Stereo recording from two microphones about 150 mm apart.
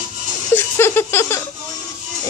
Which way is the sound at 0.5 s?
15° left (ahead or behind).